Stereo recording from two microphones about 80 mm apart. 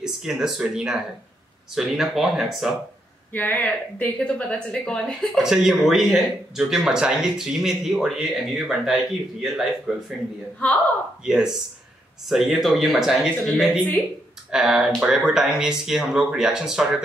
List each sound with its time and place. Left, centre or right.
0.0 s speech: centre
3.3 s speech: left
4.5 s a woman's voice: centre
5.4 s speech: centre
11.2 s speech: centre